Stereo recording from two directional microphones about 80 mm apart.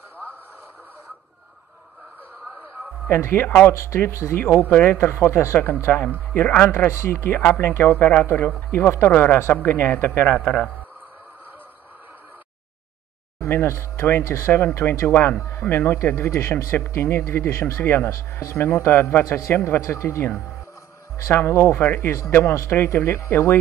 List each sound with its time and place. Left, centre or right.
3.1 s speech: left
10.4 s a man's voice: centre
13.4 s speech: left